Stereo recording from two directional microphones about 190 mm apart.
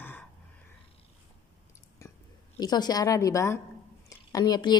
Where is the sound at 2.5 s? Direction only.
20° left (ahead or behind).